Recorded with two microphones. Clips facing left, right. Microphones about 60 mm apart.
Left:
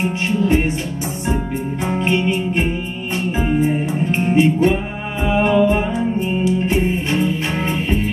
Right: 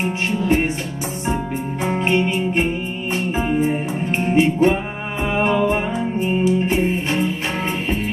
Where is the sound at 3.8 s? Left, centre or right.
Centre.